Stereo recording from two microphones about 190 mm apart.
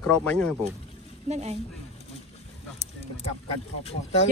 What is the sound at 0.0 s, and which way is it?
Speech, 5° left (ahead or behind).